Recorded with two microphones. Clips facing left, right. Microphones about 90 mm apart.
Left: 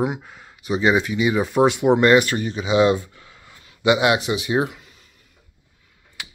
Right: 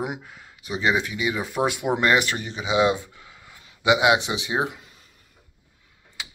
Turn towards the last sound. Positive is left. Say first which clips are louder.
# left 4 dB
turn(degrees=-20)  # may be behind; listen again after turning